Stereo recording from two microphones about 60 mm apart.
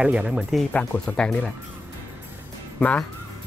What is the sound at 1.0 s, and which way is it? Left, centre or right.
Speech, centre.